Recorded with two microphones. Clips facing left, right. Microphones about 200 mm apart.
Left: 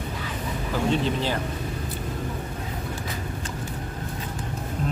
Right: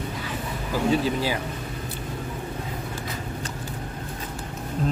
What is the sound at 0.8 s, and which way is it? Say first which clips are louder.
Speech: right 2 dB; 5° right (ahead or behind).